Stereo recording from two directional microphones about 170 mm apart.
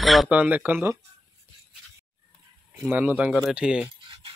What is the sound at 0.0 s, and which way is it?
Speech, centre (ahead or behind).